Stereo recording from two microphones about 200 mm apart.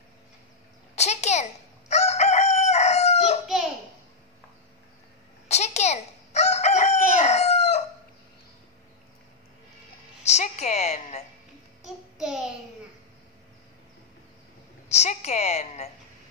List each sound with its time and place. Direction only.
0.9 s crowing: 35° left (ahead or behind)
5.5 s crowing: 35° left (ahead or behind)
7.2 s chicken: 35° left (ahead or behind)
10.2 s a sound: 35° left (ahead or behind)
11.8 s child singing: 5° right (ahead or behind)
14.9 s a sound: 35° left (ahead or behind)